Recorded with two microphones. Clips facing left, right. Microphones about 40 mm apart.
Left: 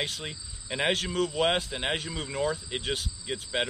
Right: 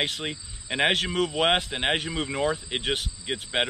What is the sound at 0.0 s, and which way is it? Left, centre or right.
Speech, right.